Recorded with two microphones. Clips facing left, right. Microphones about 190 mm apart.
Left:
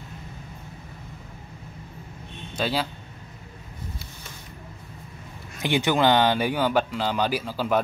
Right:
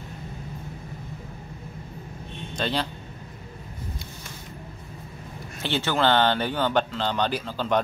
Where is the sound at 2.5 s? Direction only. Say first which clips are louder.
Left 1 dB; 5° left (ahead or behind).